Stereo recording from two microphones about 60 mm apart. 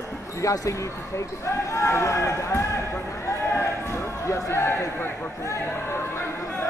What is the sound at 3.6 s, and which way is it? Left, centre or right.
Crowd, left.